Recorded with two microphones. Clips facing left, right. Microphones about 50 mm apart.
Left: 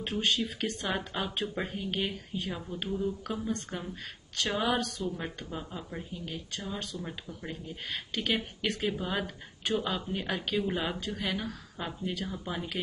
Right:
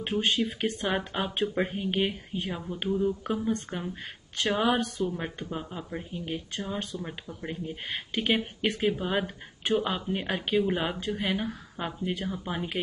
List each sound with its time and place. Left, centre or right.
0.0 s speech: right
6.1 s speech: right